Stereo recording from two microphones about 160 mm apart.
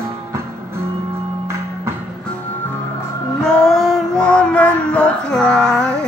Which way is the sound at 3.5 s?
5° left (ahead or behind).